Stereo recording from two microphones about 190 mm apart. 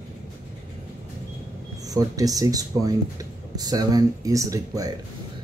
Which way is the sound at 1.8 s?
20° right (ahead or behind).